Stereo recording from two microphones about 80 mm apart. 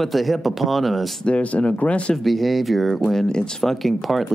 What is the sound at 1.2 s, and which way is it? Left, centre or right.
Speech, centre.